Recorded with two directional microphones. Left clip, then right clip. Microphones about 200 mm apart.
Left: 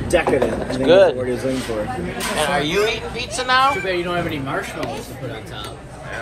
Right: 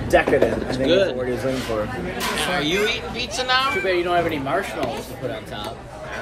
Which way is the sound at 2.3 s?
15° left (ahead or behind).